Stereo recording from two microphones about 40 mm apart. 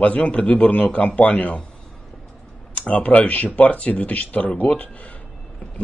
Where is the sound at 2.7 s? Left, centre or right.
Left.